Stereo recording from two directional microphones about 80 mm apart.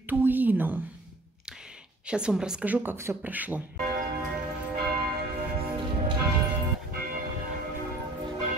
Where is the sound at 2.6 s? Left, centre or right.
Right.